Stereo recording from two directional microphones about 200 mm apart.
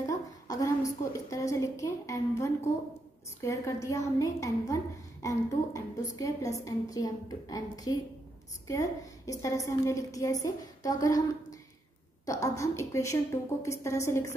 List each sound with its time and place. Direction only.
0.0 s a woman's voice: 15° left (ahead or behind)
12.3 s a woman's voice: 15° left (ahead or behind)